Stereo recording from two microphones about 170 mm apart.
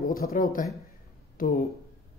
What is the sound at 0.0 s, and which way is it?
Speech, 60° left (ahead or behind).